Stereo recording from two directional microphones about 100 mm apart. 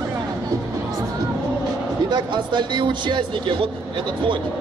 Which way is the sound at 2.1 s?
50° right (ahead or behind).